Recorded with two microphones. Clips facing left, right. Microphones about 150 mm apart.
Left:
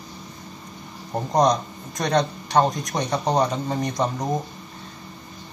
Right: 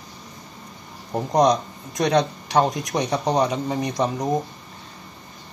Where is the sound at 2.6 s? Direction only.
Centre (ahead or behind).